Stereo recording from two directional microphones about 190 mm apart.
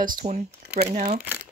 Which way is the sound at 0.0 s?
45° right (ahead or behind).